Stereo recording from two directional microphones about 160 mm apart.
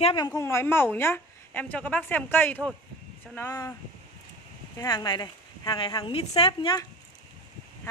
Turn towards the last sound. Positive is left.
turn(degrees=35)  # may be behind; listen again after turning